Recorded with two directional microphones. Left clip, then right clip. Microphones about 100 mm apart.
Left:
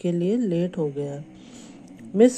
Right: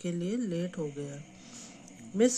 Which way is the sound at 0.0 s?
40° left (ahead or behind).